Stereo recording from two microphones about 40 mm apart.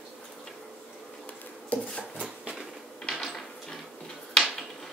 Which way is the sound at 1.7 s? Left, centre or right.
Left.